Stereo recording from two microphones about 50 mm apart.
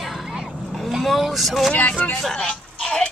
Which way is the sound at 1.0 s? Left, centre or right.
Centre.